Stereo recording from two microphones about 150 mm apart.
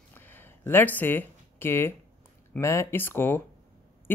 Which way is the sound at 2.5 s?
20° left (ahead or behind).